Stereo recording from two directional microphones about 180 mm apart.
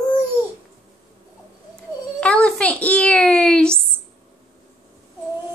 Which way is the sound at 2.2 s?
5° left (ahead or behind).